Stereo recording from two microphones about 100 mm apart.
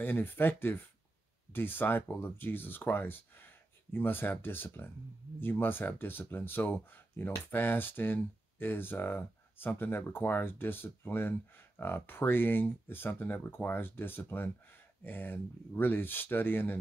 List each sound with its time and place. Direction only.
0.0 s speech: 20° left (ahead or behind)